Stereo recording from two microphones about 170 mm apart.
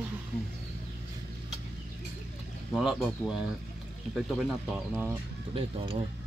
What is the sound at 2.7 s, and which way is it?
Speech, centre (ahead or behind).